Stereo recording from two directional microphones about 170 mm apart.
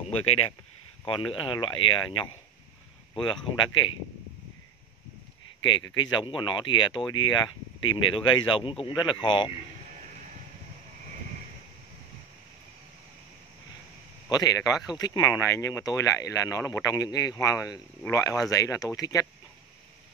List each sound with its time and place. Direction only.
0.3 s speech: 35° left (ahead or behind)
5.7 s speech: 25° left (ahead or behind)
14.3 s speech: 20° left (ahead or behind)